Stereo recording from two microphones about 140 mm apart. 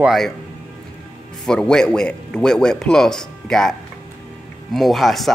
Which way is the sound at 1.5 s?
5° left (ahead or behind).